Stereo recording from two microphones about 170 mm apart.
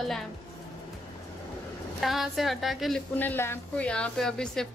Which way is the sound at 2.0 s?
Centre (ahead or behind).